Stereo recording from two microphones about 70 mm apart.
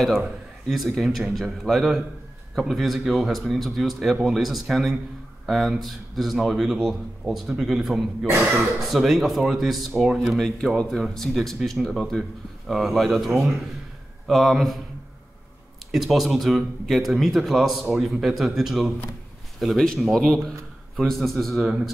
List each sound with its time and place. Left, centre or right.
0.7 s speech: centre
8.3 s speech: right
8.5 s speech: centre
15.9 s speech: centre